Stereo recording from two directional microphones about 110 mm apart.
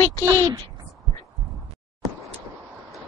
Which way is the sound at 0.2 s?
35° right (ahead or behind).